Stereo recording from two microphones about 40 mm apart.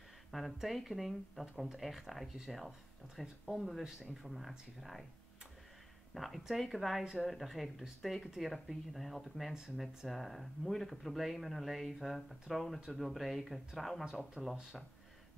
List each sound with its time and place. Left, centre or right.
0.3 s speech: centre
3.8 s speech: centre
4.2 s speech: centre
6.1 s speech: centre
14.0 s speech: centre